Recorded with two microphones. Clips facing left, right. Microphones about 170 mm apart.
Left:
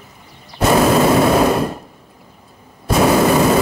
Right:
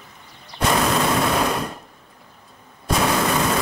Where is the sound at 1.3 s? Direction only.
50° left (ahead or behind).